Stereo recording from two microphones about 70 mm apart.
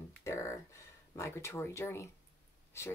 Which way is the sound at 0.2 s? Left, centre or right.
Left.